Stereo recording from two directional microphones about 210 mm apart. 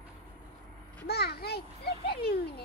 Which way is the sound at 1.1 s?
50° left (ahead or behind).